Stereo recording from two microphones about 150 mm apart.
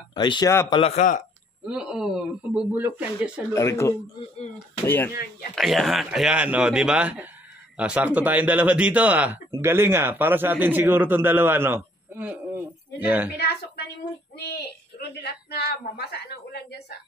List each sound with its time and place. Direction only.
0.1 s a man's voice: 30° left (ahead or behind)
0.9 s speech: 60° left (ahead or behind)
1.7 s speech: 5° right (ahead or behind)
3.5 s speech: 20° left (ahead or behind)
5.1 s speech: 85° left
5.6 s a man's voice: centre (ahead or behind)
13.4 s speech: 90° left